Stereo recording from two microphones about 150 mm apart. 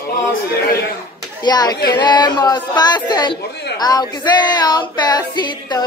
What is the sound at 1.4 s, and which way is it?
Female singing, 25° left (ahead or behind).